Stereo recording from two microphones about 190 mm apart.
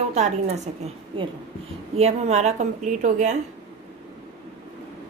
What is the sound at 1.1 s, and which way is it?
A woman's voice, 25° right (ahead or behind).